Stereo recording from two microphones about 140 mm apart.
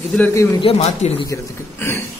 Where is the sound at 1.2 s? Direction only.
20° left (ahead or behind).